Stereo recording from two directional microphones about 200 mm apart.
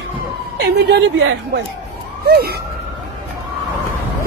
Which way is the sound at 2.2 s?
55° right (ahead or behind).